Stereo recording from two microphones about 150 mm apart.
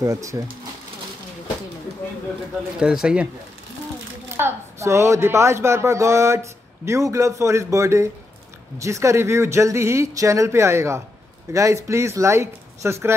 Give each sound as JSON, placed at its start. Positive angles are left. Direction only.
{"t": 0.0, "sound": "speech", "side_deg": -20}
{"t": 2.8, "sound": "speech", "side_deg": -5}
{"t": 4.4, "sound": "speech", "side_deg": -15}